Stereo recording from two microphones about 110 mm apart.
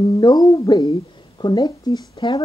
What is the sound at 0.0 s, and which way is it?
Speech, 35° left (ahead or behind).